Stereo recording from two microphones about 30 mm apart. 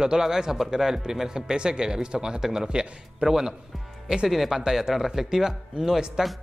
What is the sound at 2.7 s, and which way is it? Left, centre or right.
Speech, right.